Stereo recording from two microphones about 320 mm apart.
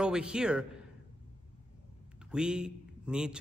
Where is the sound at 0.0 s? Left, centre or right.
Centre.